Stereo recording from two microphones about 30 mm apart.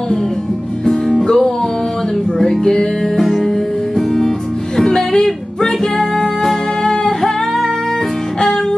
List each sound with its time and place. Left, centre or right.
0.8 s music: centre
2.6 s music: left
4.7 s music: centre